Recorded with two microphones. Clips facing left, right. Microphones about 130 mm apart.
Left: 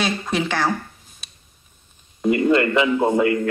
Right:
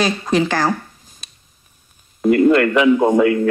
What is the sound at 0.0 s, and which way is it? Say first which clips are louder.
Speech: right 5 dB; centre (ahead or behind).